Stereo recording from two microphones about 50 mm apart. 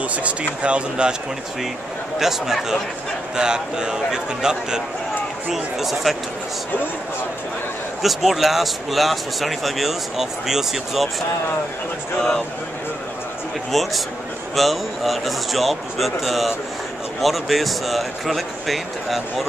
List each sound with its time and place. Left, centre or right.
0.1 s speech: right
2.1 s a man's voice: centre
8.0 s speech: centre
12.2 s speech: centre
13.7 s speech: centre